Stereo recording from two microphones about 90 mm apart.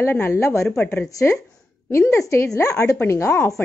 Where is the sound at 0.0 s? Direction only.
25° left (ahead or behind).